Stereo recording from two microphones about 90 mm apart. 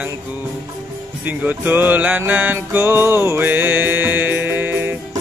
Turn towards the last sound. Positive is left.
turn(degrees=-25)  # may be behind; listen again after turning